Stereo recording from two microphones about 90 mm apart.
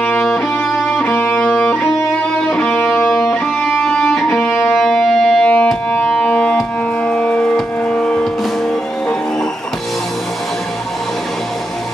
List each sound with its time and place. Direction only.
0.0 s music: 15° left (ahead or behind)
2.5 s music: 15° left (ahead or behind)
4.3 s music: 20° left (ahead or behind)
4.7 s music: centre (ahead or behind)
7.1 s civil defense siren: 15° left (ahead or behind)